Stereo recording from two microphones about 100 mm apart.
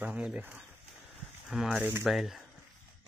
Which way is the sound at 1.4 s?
Centre (ahead or behind).